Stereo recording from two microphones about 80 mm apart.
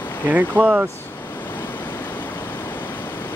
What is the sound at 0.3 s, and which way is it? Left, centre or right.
Speech, centre.